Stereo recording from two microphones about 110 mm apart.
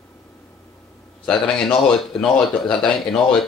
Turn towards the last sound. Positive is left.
turn(degrees=5)  # may be behind; listen again after turning